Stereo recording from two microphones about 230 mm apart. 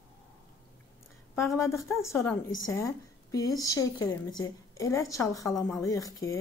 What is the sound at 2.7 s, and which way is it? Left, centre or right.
A woman's voice, centre.